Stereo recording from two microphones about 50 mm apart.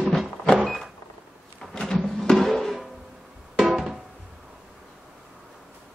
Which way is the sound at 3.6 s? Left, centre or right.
Centre.